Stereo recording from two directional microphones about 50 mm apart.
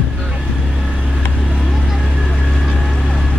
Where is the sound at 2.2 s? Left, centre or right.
Left.